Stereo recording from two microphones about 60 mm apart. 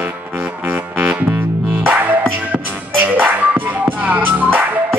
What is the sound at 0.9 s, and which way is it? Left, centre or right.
Music, right.